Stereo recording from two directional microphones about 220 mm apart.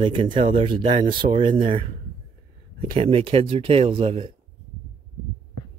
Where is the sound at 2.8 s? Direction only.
25° right (ahead or behind).